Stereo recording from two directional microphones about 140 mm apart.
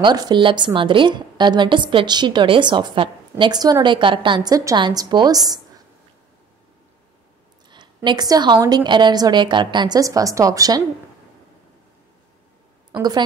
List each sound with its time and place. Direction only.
0.0 s a woman's voice: 30° right (ahead or behind)
7.7 s a woman's voice: 35° right (ahead or behind)
12.9 s a woman's voice: 30° right (ahead or behind)